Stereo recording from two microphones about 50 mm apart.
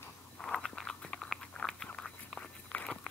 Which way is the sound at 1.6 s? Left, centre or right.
Left.